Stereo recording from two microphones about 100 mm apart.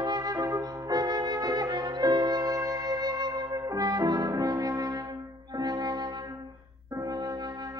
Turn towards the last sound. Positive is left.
turn(degrees=-40)  # may be behind; listen again after turning